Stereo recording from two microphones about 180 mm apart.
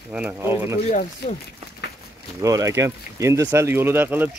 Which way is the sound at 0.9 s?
40° left (ahead or behind).